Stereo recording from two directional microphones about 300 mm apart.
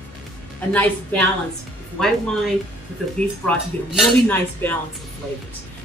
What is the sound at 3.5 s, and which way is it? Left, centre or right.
Speech, centre.